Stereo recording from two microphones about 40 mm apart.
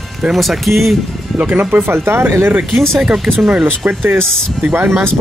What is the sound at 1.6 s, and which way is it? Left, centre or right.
Speech, right.